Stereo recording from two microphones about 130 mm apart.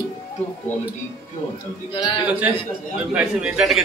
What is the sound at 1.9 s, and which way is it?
Speech, 35° left (ahead or behind).